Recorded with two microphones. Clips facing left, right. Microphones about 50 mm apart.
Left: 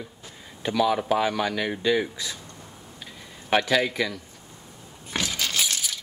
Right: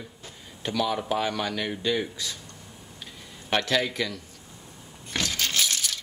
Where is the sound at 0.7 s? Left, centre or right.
Centre.